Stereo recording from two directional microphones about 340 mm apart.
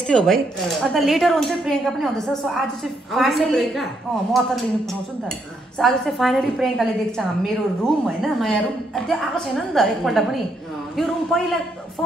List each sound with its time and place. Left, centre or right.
0.0 s a woman's voice: centre